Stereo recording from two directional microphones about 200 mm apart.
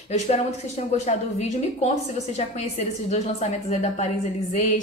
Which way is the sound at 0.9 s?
35° left (ahead or behind).